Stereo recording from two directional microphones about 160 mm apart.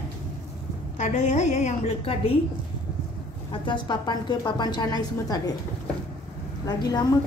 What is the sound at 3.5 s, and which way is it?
A woman's voice, 30° left (ahead or behind).